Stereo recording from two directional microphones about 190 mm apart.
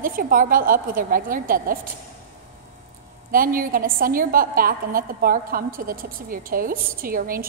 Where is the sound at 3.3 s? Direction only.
50° right (ahead or behind).